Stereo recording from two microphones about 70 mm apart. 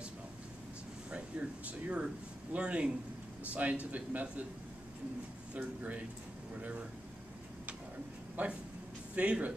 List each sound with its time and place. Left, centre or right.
1.1 s a man's voice: centre
5.5 s a man's voice: centre
8.4 s a man's voice: right